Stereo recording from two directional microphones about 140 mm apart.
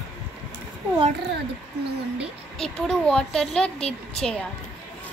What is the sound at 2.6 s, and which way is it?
A woman's voice, 5° left (ahead or behind).